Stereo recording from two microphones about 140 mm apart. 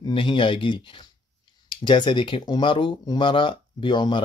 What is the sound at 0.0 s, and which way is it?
Speech, 35° left (ahead or behind).